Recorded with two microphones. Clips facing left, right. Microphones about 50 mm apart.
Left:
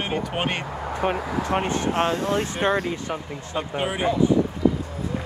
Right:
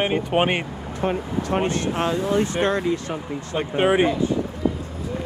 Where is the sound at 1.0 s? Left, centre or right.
Left.